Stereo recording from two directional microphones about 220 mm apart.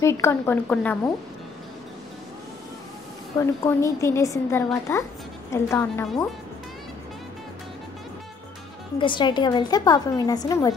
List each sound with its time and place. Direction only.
0.0 s a woman's voice: 10° left (ahead or behind)
3.3 s a woman's voice: 15° left (ahead or behind)
8.9 s a woman's voice: 20° left (ahead or behind)